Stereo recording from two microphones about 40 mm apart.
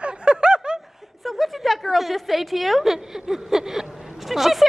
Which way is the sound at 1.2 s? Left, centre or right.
Centre.